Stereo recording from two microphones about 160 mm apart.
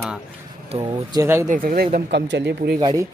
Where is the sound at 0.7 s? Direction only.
30° right (ahead or behind).